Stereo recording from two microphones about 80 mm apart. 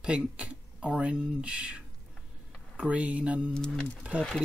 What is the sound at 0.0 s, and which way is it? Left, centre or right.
Speech, centre.